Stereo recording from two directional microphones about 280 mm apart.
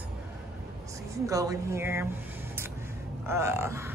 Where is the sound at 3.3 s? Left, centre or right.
Centre.